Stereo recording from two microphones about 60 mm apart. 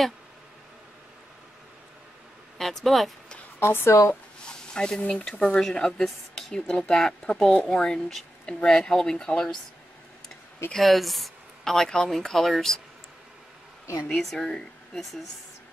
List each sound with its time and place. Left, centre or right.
2.5 s speech: centre
3.5 s speech: left
4.5 s speech: centre
5.6 s speech: centre
10.7 s speech: centre
14.0 s speech: centre